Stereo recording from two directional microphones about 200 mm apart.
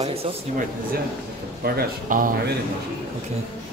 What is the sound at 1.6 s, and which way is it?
Speech, 45° right (ahead or behind).